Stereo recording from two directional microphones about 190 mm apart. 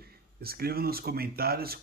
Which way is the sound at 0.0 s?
55° right (ahead or behind).